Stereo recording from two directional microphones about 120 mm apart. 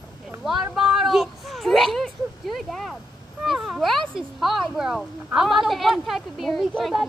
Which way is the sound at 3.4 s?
5° right (ahead or behind).